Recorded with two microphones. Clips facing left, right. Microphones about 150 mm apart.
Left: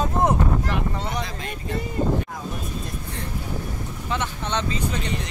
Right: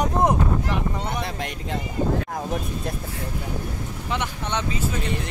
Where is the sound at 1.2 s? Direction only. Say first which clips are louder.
Right 2 dB; 75° right (ahead or behind).